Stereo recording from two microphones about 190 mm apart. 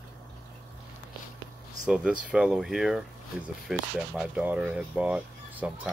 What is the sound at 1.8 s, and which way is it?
Speech, 5° right (ahead or behind).